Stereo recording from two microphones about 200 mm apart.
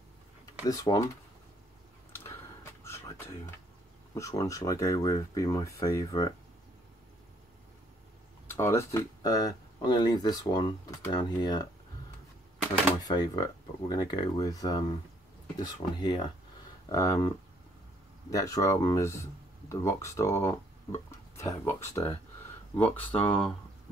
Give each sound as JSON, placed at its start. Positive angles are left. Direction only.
{"t": 0.7, "sound": "speech", "side_deg": 15}
{"t": 2.8, "sound": "a sound", "side_deg": 15}
{"t": 4.1, "sound": "speech", "side_deg": 15}
{"t": 8.5, "sound": "speech", "side_deg": 15}
{"t": 13.0, "sound": "speech", "side_deg": 20}
{"t": 16.0, "sound": "speech", "side_deg": 25}
{"t": 18.3, "sound": "speech", "side_deg": 15}
{"t": 23.1, "sound": "speech", "side_deg": 25}